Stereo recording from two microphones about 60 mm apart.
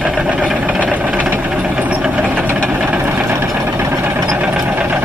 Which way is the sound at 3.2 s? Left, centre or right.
Right.